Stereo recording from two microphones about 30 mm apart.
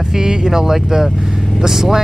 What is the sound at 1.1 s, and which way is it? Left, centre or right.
Speech, centre.